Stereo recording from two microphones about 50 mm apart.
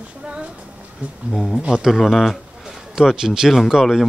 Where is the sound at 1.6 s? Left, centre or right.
Centre.